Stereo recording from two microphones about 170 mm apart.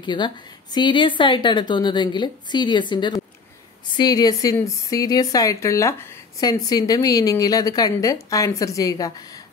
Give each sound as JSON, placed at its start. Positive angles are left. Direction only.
{"t": 0.0, "sound": "a woman's voice", "side_deg": 25}